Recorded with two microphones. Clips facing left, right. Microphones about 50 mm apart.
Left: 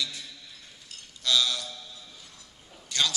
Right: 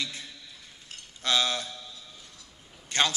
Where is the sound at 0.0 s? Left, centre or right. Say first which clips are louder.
Left 1 dB; right.